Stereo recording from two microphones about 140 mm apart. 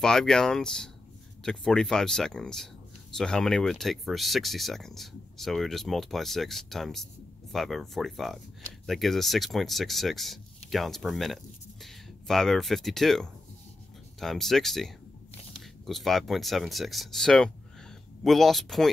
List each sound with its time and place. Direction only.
0.0 s speech: 5° left (ahead or behind)